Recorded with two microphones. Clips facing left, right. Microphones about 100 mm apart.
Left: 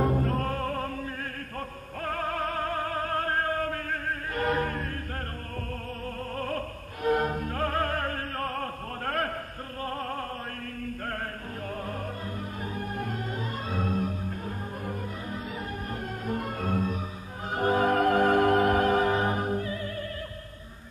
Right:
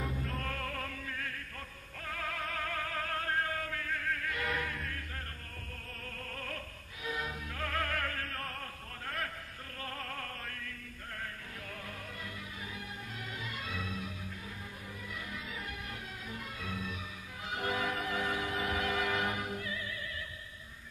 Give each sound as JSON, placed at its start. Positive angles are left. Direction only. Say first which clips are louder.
{"t": 0.0, "sound": "music", "louder": "left 12 dB", "side_deg": 50}
{"t": 2.0, "sound": "music", "louder": "left 9 dB", "side_deg": 45}
{"t": 6.3, "sound": "opera", "louder": "left 13 dB", "side_deg": 40}
{"t": 9.8, "sound": "opera", "louder": "left 9 dB", "side_deg": 35}
{"t": 12.7, "sound": "music", "louder": "left 12 dB", "side_deg": 55}
{"t": 16.3, "sound": "music", "louder": "left 13 dB", "side_deg": 50}